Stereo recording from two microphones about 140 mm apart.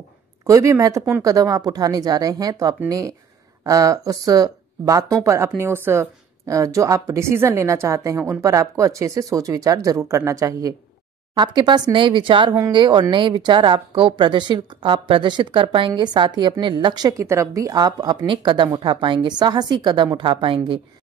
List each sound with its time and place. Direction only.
0.5 s a woman's voice: 25° right (ahead or behind); by 20.8 s 40° right (ahead or behind)